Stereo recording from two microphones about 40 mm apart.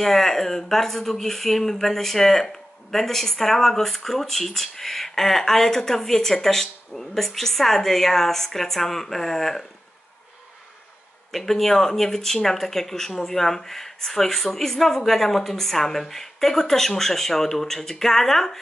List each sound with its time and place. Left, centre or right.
0.0 s speech: centre
11.3 s speech: centre